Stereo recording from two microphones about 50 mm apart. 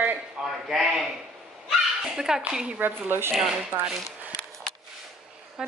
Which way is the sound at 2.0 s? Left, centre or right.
Centre.